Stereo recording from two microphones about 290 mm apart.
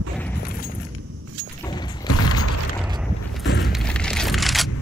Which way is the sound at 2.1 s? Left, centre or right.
Left.